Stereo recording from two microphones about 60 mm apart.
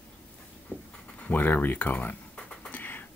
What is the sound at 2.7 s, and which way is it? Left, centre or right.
Beatboxing, left.